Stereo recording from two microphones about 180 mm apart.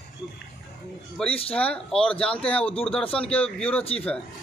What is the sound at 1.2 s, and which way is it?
Speech, 5° left (ahead or behind).